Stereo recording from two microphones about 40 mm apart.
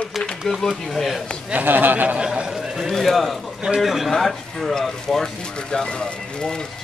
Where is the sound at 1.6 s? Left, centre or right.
Right.